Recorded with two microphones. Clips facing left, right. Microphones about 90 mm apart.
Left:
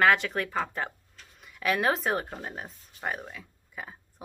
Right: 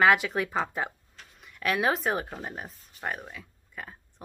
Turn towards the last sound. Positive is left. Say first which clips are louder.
# left 1 dB
turn(degrees=5)  # may be behind; listen again after turning